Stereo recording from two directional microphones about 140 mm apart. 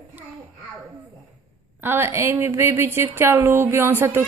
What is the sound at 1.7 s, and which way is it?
A woman's voice, 15° right (ahead or behind).